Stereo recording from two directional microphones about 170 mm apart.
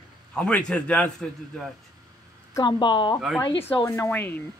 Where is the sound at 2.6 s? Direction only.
25° left (ahead or behind).